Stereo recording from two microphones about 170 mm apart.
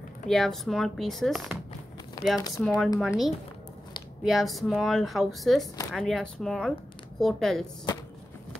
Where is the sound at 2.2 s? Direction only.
20° left (ahead or behind).